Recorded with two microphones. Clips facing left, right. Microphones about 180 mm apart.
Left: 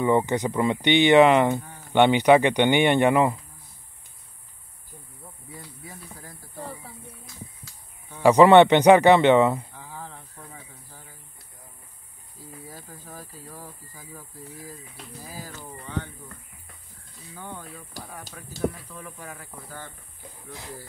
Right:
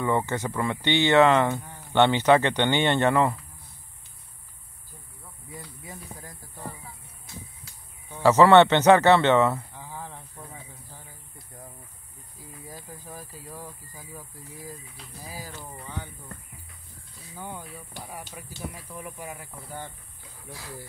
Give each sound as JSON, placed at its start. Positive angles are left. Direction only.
{"t": 0.0, "sound": "speech", "side_deg": 15}
{"t": 8.2, "sound": "speech", "side_deg": 15}
{"t": 9.8, "sound": "a sound", "side_deg": -15}
{"t": 10.4, "sound": "insect", "side_deg": -15}
{"t": 12.6, "sound": "a sound", "side_deg": -15}
{"t": 13.9, "sound": "speech", "side_deg": -15}
{"t": 17.4, "sound": "speech", "side_deg": -10}